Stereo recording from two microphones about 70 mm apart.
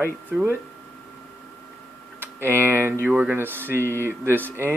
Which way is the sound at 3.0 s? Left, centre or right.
Right.